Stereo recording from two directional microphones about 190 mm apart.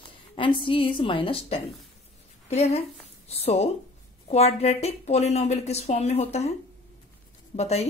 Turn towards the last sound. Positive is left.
turn(degrees=35)  # may be behind; listen again after turning